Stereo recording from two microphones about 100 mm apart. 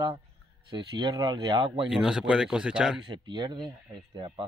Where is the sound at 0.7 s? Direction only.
50° right (ahead or behind).